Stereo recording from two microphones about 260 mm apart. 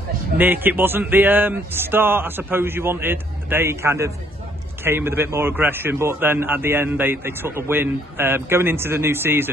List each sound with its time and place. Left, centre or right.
0.4 s a man's voice: centre